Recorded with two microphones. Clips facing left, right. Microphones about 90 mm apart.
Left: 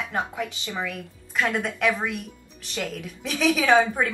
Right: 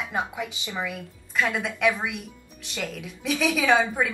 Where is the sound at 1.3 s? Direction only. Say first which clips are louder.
Left 1 dB; centre (ahead or behind).